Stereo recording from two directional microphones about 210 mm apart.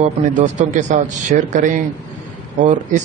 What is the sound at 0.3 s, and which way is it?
A man's voice, 35° right (ahead or behind).